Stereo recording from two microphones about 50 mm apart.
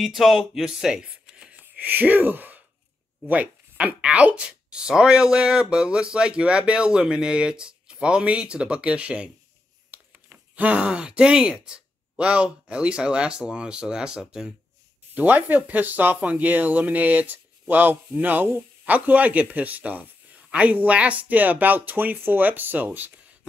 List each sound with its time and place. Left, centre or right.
0.0 s speech: centre
1.0 s a sound: right
1.6 s speech: right
10.5 s speech: right
15.1 s speech: right